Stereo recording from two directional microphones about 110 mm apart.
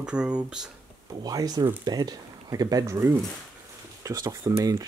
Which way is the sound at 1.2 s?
35° right (ahead or behind).